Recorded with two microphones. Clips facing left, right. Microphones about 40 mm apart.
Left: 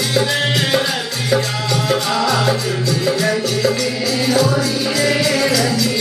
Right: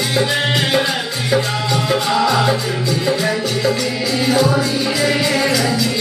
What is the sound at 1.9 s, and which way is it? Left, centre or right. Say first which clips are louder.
Music: right 2 dB; centre.